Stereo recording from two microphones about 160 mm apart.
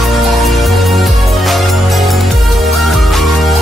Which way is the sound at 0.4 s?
Centre (ahead or behind).